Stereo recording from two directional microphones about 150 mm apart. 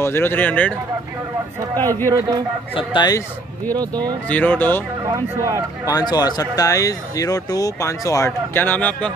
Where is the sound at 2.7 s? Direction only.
30° left (ahead or behind).